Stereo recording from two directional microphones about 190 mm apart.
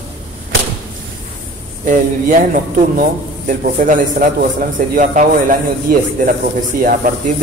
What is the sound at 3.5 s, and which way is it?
A man's voice, 45° right (ahead or behind).